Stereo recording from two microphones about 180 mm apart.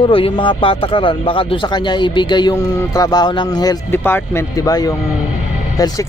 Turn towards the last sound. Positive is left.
turn(degrees=20)  # may be behind; listen again after turning